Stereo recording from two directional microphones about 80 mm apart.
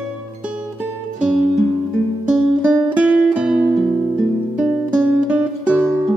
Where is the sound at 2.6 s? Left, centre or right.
Centre.